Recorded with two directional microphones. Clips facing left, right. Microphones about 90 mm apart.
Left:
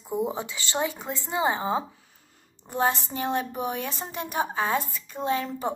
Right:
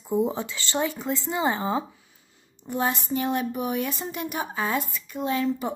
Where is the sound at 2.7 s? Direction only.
35° left (ahead or behind).